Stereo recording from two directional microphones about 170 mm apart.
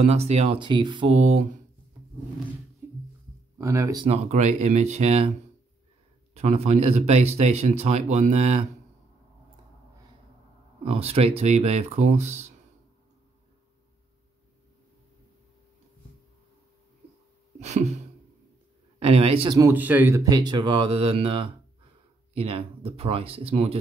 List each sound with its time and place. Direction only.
0.0 s speech: 40° right (ahead or behind)
1.1 s speech: 40° right (ahead or behind)
3.5 s speech: 15° right (ahead or behind)
4.0 s speech: 40° right (ahead or behind)
6.3 s speech: 40° right (ahead or behind)
10.8 s speech: 35° right (ahead or behind)
17.6 s a sound: 40° right (ahead or behind)
18.9 s speech: 35° right (ahead or behind)
19.6 s speech: 10° right (ahead or behind); by 23.8 s 35° right (ahead or behind)